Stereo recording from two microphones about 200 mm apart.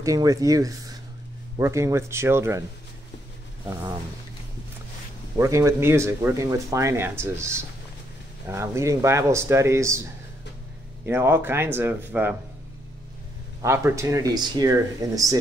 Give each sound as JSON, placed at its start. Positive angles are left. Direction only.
{"t": 0.0, "sound": "speech", "side_deg": -15}
{"t": 5.4, "sound": "speech", "side_deg": -15}
{"t": 11.1, "sound": "speech", "side_deg": -10}
{"t": 13.6, "sound": "speech", "side_deg": -15}